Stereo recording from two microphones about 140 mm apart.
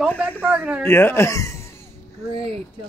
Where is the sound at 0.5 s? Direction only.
10° right (ahead or behind).